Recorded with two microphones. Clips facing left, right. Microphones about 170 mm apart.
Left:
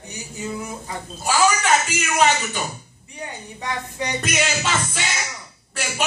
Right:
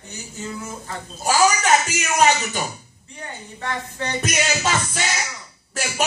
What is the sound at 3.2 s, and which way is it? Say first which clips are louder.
Speech: left 1 dB; 15° left (ahead or behind).